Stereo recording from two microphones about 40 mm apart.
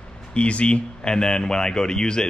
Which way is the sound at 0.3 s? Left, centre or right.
Left.